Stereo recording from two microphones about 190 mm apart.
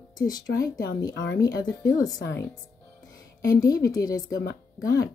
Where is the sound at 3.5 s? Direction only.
20° left (ahead or behind).